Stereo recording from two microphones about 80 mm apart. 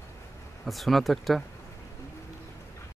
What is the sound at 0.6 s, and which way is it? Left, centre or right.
Speech, centre.